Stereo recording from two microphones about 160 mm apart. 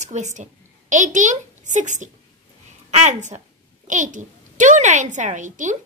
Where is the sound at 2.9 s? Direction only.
45° right (ahead or behind).